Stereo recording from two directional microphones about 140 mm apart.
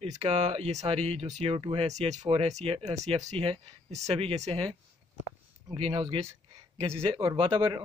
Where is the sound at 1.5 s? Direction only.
40° right (ahead or behind).